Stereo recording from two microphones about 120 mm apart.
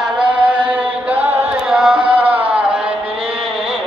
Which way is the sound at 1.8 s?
5° right (ahead or behind).